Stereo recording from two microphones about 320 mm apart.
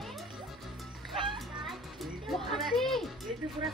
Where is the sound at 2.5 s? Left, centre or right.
Centre.